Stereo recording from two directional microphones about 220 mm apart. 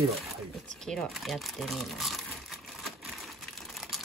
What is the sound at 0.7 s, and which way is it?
Crumpling, centre (ahead or behind).